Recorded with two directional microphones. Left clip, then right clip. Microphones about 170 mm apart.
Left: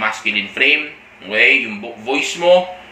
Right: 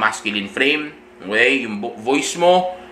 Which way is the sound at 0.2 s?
40° right (ahead or behind).